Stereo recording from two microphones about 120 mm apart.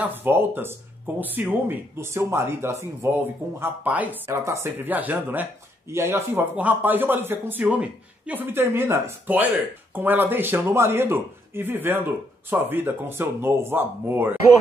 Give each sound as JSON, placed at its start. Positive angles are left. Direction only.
{"t": 0.2, "sound": "speech", "side_deg": -15}